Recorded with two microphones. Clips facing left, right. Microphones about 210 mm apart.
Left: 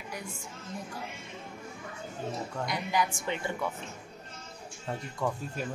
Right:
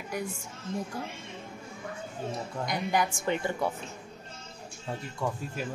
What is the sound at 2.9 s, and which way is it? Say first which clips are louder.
Speech: right 3 dB; 50° right (ahead or behind).